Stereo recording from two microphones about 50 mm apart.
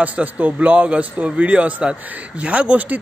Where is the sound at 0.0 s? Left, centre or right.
Right.